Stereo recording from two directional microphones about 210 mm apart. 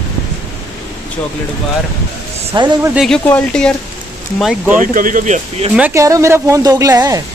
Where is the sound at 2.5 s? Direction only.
20° right (ahead or behind).